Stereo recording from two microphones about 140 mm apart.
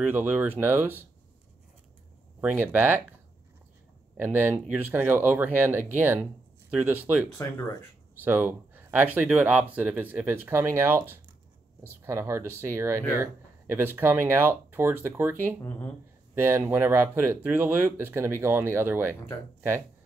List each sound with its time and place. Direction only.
0.1 s speech: 15° right (ahead or behind)
2.4 s speech: 15° right (ahead or behind)
4.2 s speech: 15° right (ahead or behind)